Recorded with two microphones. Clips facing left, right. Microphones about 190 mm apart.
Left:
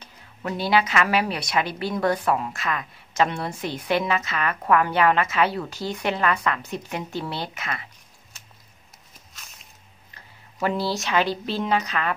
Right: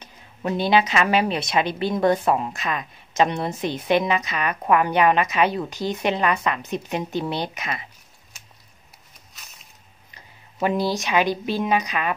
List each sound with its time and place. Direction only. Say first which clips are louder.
0.0 s a woman's voice: right 4 dB; 20° right (ahead or behind)
10.1 s speech: right 4 dB; 15° right (ahead or behind)